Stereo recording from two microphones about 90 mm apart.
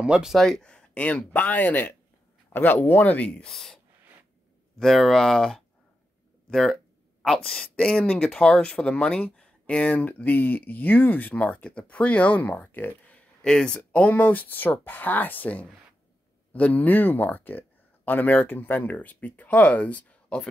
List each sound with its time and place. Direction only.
0.0 s speech: 10° right (ahead or behind); by 3.5 s 10° left (ahead or behind)
3.5 s speech: centre (ahead or behind)
6.5 s a sound: centre (ahead or behind)
7.4 s speech: 5° left (ahead or behind)